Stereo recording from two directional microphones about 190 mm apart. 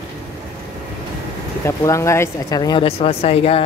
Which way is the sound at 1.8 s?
15° left (ahead or behind).